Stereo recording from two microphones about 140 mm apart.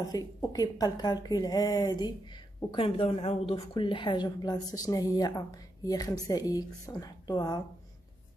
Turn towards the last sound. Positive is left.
turn(degrees=25)  # may be behind; listen again after turning